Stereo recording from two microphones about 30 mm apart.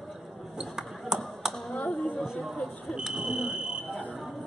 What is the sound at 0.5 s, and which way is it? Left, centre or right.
Basketball bounce, centre.